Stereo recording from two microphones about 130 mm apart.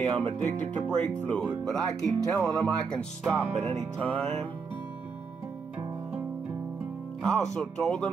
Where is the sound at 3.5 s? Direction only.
55° right (ahead or behind).